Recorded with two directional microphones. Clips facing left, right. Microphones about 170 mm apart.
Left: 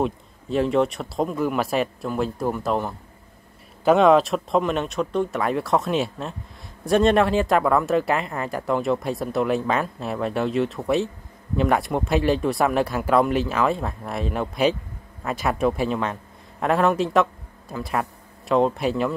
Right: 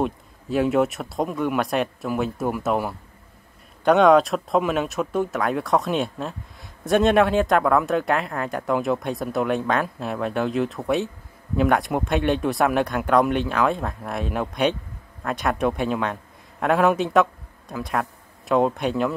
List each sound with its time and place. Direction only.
0.0 s a man's voice: centre (ahead or behind)